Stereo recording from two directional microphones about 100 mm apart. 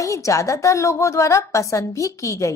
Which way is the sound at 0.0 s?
30° left (ahead or behind).